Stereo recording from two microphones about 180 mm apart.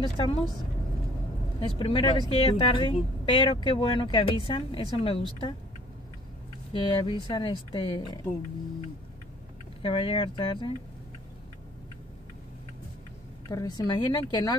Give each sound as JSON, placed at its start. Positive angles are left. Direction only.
{"t": 0.0, "sound": "speech", "side_deg": 25}
{"t": 1.6, "sound": "speech", "side_deg": 30}
{"t": 6.7, "sound": "speech", "side_deg": 25}
{"t": 9.8, "sound": "speech", "side_deg": 30}
{"t": 13.5, "sound": "speech", "side_deg": 20}